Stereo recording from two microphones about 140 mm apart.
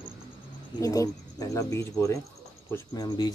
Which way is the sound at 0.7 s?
25° left (ahead or behind).